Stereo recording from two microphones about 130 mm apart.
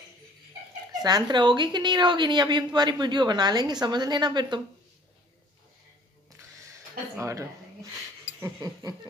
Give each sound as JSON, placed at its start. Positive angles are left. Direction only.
{"t": 1.0, "sound": "a woman's voice", "side_deg": -35}
{"t": 6.6, "sound": "a sound", "side_deg": -25}
{"t": 8.5, "sound": "a woman's voice", "side_deg": -30}